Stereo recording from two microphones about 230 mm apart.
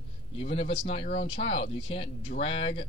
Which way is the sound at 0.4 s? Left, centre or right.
Left.